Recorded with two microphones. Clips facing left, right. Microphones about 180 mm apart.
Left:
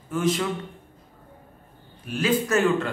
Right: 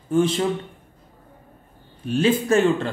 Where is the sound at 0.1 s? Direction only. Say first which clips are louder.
Right 5 dB; 30° right (ahead or behind).